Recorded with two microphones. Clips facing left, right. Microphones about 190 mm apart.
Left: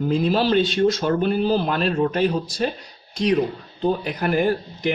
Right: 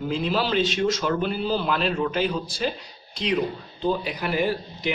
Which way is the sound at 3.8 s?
50° left (ahead or behind).